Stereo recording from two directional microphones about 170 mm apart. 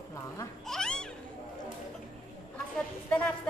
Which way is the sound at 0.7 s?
5° left (ahead or behind).